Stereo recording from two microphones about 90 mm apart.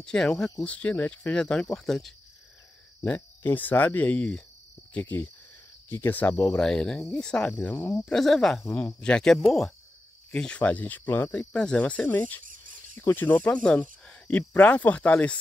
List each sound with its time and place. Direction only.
0.0 s speech: 5° left (ahead or behind)
3.2 s speech: 20° left (ahead or behind)
5.9 s speech: 25° left (ahead or behind)